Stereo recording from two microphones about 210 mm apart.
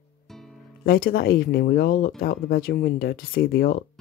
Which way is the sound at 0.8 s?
45° left (ahead or behind).